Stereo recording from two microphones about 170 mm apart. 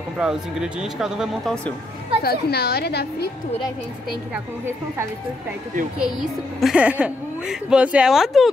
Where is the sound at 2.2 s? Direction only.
70° left (ahead or behind).